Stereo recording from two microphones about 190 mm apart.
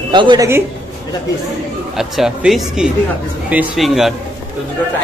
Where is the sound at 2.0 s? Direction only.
Centre (ahead or behind).